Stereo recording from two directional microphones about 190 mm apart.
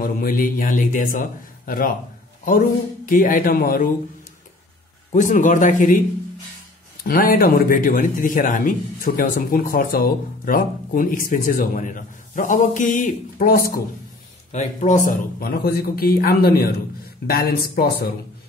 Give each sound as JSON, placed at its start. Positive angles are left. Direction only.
{"t": 0.0, "sound": "a man's voice", "side_deg": 50}
{"t": 3.1, "sound": "a man's voice", "side_deg": 45}
{"t": 5.1, "sound": "speech", "side_deg": 40}
{"t": 7.0, "sound": "a man's voice", "side_deg": 50}
{"t": 14.5, "sound": "a man's voice", "side_deg": 40}